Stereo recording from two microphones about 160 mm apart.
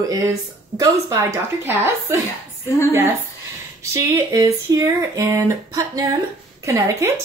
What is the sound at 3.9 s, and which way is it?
A woman's voice, 20° right (ahead or behind).